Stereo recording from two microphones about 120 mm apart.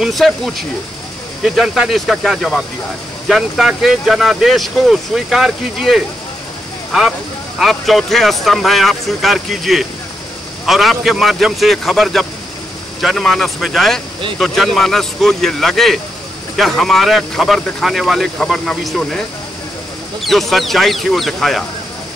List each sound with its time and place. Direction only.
0.0 s speech: centre (ahead or behind)